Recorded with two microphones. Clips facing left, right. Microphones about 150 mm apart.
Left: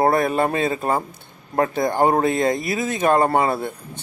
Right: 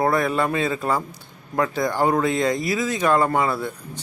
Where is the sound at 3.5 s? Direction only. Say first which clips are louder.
Left 1 dB; 55° left (ahead or behind).